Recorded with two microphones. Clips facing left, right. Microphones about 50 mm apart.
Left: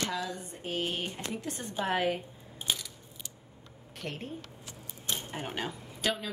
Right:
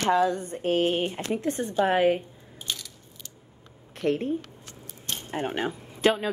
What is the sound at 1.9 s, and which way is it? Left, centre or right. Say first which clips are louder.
Speech: right 7 dB; right.